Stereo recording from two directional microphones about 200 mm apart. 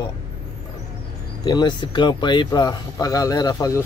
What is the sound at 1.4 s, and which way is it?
Speech, 20° left (ahead or behind).